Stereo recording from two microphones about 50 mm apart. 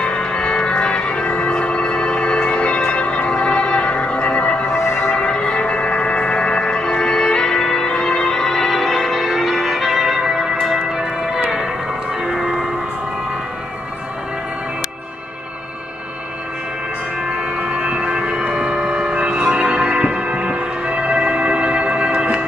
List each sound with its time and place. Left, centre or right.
0.0 s music: centre
4.7 s music: left
5.1 s music: centre
10.7 s church bell: centre
12.2 s music: centre
17.4 s a sound: right